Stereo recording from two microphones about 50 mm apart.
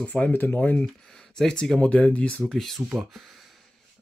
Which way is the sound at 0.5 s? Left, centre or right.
Left.